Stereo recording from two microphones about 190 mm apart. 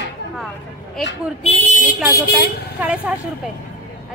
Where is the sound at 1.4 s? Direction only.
40° left (ahead or behind).